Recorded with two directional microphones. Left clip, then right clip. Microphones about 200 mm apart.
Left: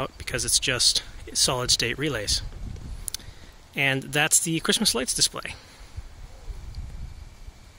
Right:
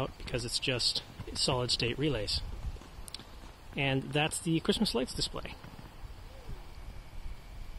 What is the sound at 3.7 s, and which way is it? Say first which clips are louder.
Speech: left 8 dB; 20° left (ahead or behind).